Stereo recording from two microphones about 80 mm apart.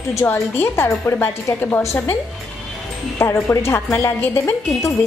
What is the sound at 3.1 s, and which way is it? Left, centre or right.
A woman's voice, left.